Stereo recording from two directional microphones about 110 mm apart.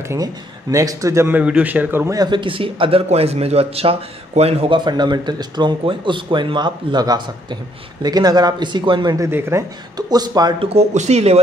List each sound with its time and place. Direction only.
0.1 s speech: 30° right (ahead or behind)
1.4 s a man's voice: 10° right (ahead or behind)
2.1 s a man's voice: 45° right (ahead or behind); by 4.7 s 65° right (ahead or behind)
4.7 s speech: 40° right (ahead or behind)
9.2 s speech: 25° right (ahead or behind)
9.9 s speech: 40° right (ahead or behind)
10.6 s speech: 70° right (ahead or behind)